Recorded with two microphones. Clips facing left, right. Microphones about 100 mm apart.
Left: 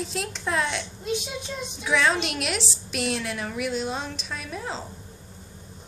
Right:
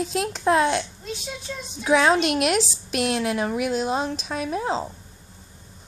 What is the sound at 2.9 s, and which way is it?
Speech, 70° right (ahead or behind).